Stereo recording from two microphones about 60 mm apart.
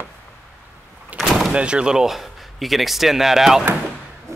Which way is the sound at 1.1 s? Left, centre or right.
Right.